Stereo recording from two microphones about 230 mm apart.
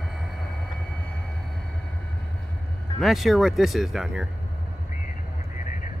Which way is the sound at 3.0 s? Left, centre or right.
Centre.